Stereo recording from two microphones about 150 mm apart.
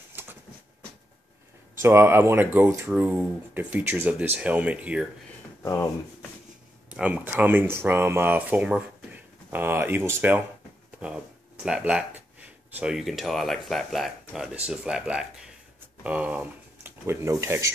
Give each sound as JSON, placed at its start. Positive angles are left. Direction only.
{"t": 0.1, "sound": "train", "side_deg": -15}
{"t": 1.8, "sound": "speech", "side_deg": -15}
{"t": 5.6, "sound": "speech", "side_deg": 20}
{"t": 6.9, "sound": "speech", "side_deg": -10}